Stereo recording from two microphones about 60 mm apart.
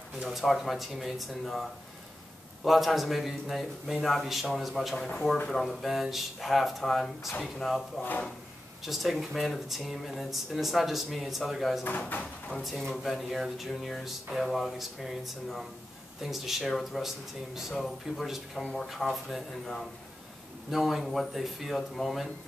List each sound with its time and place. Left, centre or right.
0.2 s speech: centre
8.0 s speech: left
8.8 s speech: centre